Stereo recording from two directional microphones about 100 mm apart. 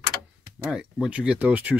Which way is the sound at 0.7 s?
10° right (ahead or behind).